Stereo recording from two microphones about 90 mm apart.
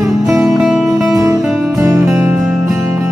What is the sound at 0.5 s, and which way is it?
Music, 5° right (ahead or behind).